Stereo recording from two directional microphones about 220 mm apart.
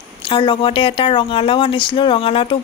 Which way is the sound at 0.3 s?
20° left (ahead or behind).